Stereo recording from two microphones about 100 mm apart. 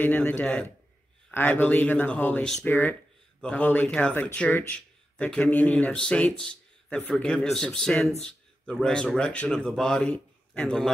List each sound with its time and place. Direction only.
0.0 s speech: 15° left (ahead or behind)